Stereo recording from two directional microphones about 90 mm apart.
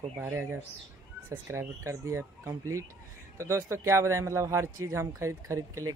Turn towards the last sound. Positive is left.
turn(degrees=-30)  # may be behind; listen again after turning